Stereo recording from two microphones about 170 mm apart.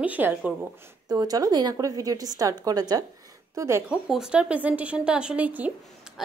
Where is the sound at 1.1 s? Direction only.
25° right (ahead or behind).